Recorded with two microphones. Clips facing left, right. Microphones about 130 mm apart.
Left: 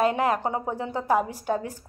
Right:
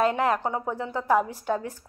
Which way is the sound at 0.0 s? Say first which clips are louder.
Even; 10° left (ahead or behind).